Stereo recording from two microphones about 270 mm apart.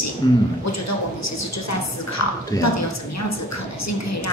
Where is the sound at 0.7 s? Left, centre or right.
Left.